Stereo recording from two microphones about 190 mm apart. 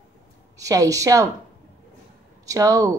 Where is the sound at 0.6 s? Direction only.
15° right (ahead or behind).